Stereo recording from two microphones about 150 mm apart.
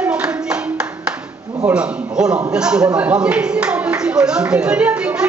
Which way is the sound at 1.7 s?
5° right (ahead or behind).